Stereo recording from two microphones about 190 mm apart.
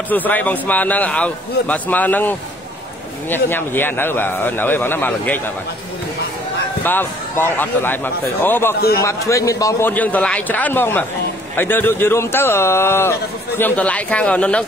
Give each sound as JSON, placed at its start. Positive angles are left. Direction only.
{"t": 0.1, "sound": "a man's voice", "side_deg": 10}
{"t": 6.8, "sound": "a man's voice", "side_deg": 10}
{"t": 8.7, "sound": "a man's voice", "side_deg": 55}
{"t": 9.3, "sound": "a man's voice", "side_deg": 15}